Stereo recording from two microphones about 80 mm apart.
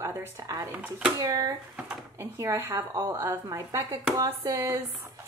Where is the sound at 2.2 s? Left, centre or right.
Right.